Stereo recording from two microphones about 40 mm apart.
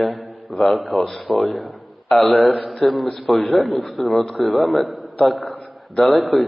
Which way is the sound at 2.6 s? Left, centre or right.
Centre.